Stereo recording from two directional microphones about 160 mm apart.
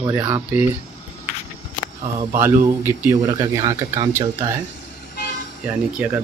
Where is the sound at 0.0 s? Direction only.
15° right (ahead or behind).